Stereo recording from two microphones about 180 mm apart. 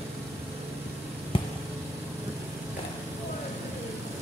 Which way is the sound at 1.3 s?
30° left (ahead or behind).